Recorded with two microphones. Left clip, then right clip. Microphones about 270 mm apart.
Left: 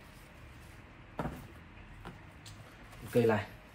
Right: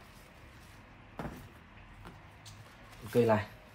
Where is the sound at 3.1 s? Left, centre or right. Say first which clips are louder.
Right 1 dB; right.